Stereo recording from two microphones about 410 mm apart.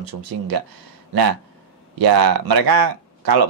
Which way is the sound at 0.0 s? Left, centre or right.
Right.